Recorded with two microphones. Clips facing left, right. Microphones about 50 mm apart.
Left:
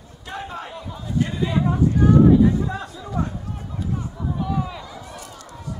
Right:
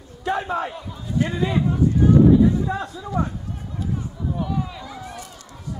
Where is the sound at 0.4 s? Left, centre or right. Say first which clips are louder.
Right 3 dB; right.